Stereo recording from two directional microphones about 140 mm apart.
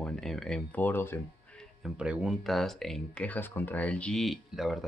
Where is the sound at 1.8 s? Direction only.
5° right (ahead or behind).